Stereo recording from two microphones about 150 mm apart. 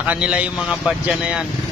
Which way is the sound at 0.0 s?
10° right (ahead or behind).